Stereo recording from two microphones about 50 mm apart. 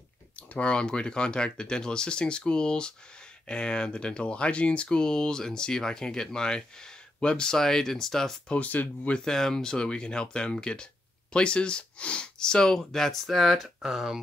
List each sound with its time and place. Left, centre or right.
0.4 s speech: left; by 8.4 s centre
8.5 s speech: left
9.1 s speech: centre
13.8 s speech: centre